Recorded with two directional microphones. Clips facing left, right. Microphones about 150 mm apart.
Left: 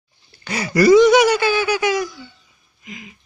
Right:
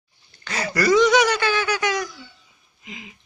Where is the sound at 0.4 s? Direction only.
10° left (ahead or behind).